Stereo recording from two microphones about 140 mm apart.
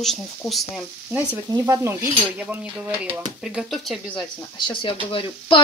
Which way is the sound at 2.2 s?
10° right (ahead or behind).